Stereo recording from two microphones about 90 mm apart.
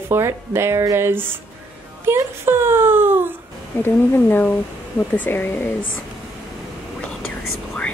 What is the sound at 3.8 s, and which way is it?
A woman's voice, 25° left (ahead or behind).